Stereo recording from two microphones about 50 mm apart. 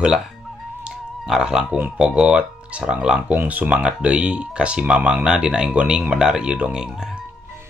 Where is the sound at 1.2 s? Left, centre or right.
Centre.